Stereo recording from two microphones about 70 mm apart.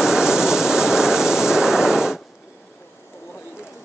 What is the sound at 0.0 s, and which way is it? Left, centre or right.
Vehicle, centre.